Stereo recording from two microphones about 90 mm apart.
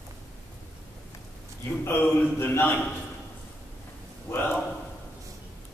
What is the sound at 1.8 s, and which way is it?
A man's voice, 25° left (ahead or behind).